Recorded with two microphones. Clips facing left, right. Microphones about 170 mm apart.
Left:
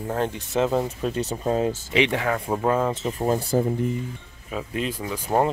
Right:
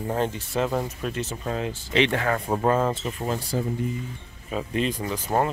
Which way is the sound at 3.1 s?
45° left (ahead or behind).